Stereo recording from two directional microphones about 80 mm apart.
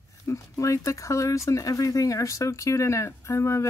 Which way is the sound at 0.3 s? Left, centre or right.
Left.